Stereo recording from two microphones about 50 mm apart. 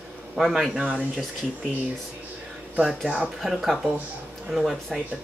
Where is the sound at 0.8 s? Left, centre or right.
Centre.